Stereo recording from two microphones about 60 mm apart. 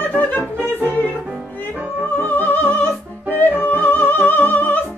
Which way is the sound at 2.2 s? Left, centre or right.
Left.